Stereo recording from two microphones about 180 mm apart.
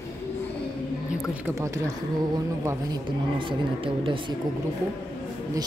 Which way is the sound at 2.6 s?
25° right (ahead or behind).